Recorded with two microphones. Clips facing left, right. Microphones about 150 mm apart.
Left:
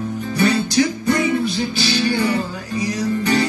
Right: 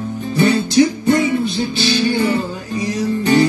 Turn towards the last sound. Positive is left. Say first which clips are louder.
# right 4 dB
turn(degrees=-25)  # may be behind; listen again after turning